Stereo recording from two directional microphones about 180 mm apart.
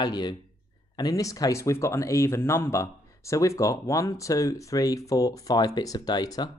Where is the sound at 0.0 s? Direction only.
25° left (ahead or behind).